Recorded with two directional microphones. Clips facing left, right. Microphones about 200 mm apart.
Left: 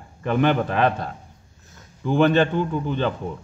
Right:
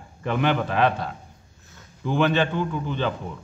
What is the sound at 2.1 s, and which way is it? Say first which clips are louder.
Speech: left 4 dB; 50° left (ahead or behind).